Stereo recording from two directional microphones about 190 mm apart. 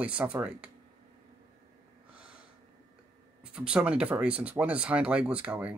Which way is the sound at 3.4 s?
5° right (ahead or behind).